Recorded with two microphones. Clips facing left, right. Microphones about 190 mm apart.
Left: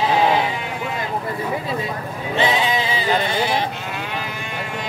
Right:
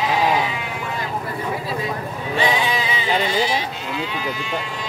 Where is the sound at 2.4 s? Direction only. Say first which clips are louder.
Left 1 dB; 25° left (ahead or behind).